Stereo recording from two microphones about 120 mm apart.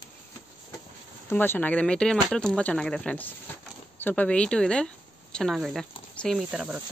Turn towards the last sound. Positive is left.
turn(degrees=-10)  # may be behind; listen again after turning